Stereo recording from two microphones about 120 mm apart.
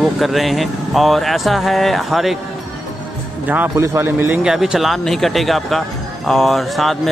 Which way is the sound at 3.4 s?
15° right (ahead or behind).